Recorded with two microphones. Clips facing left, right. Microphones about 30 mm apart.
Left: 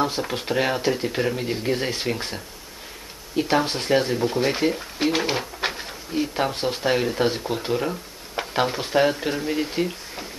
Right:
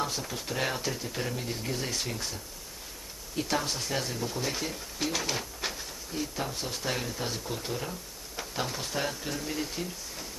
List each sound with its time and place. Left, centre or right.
0.0 s speech: left
0.6 s speech: left